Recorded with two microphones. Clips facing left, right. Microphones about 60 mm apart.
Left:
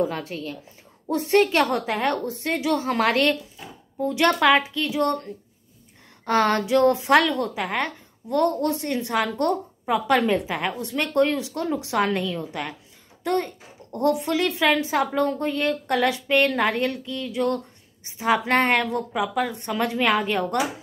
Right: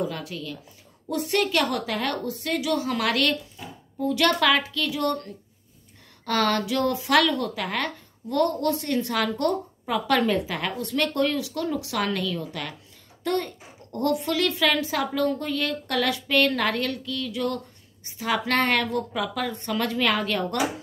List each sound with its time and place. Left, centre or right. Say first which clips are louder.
0.0 s a woman's voice: left 4 dB; left